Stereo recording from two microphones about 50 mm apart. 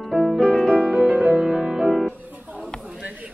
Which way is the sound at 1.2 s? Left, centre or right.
Centre.